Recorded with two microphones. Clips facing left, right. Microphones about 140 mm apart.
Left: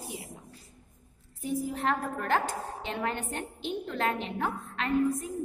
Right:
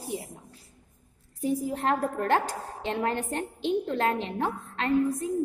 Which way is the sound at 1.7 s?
40° right (ahead or behind).